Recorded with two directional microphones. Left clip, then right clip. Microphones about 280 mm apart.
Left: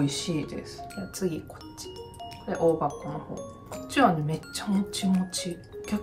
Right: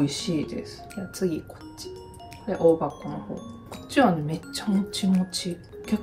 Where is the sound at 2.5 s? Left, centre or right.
Centre.